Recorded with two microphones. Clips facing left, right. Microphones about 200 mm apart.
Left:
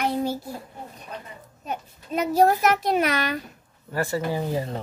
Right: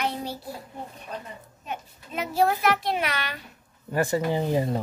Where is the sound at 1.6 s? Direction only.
40° left (ahead or behind).